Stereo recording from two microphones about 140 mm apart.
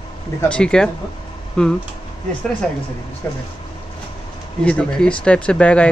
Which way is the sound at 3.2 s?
15° left (ahead or behind).